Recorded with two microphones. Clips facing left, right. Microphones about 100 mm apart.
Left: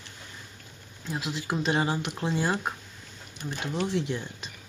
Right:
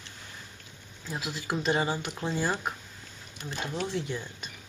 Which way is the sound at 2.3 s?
15° left (ahead or behind).